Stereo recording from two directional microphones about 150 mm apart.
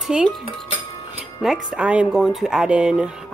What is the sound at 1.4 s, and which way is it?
Cutlery, 5° right (ahead or behind).